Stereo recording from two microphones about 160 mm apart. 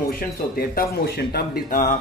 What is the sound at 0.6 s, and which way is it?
Speech, 70° left (ahead or behind).